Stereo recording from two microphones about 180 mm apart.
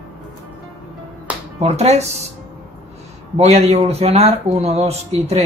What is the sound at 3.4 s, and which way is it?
Speech, 35° right (ahead or behind).